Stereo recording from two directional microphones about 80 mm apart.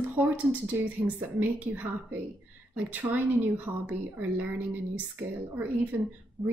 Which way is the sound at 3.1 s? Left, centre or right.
Right.